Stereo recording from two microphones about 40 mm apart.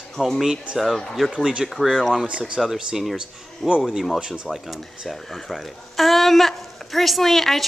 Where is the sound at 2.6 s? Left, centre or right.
Centre.